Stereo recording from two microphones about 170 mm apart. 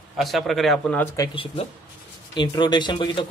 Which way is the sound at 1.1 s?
25° left (ahead or behind).